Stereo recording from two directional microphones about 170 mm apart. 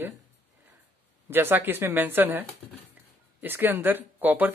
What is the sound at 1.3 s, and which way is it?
Speech, 10° right (ahead or behind).